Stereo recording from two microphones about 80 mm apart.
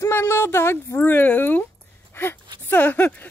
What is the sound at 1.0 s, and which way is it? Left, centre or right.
Speech, left.